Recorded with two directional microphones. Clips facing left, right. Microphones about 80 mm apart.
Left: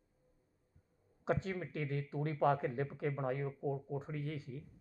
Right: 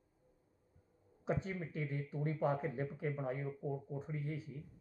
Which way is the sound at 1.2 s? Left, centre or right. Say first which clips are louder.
Left 2 dB; left.